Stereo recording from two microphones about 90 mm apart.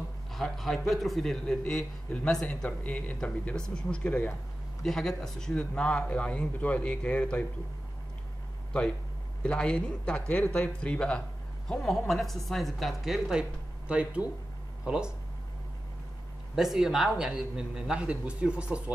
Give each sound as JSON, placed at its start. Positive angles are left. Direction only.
{"t": 0.3, "sound": "a man's voice", "side_deg": 5}
{"t": 4.8, "sound": "speech", "side_deg": 5}
{"t": 9.4, "sound": "a man's voice", "side_deg": 10}
{"t": 16.5, "sound": "a man's voice", "side_deg": -5}